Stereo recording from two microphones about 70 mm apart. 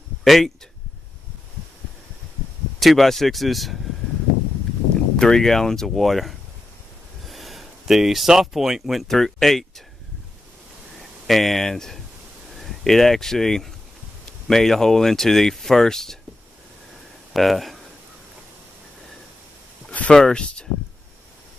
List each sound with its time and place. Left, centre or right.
0.2 s speech: centre
2.8 s speech: centre
5.1 s speech: centre
11.2 s speech: centre
17.3 s speech: centre
19.9 s a sound: centre
20.2 s speech: centre